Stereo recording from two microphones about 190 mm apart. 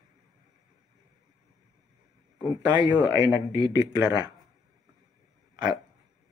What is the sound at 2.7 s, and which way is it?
Speech, 20° right (ahead or behind).